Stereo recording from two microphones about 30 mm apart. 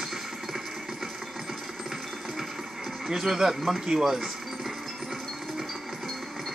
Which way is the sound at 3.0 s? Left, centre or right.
Centre.